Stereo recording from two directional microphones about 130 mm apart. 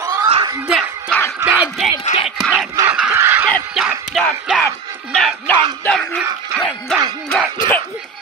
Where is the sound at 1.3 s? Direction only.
15° right (ahead or behind).